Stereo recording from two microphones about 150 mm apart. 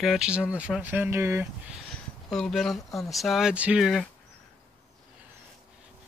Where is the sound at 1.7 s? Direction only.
5° left (ahead or behind).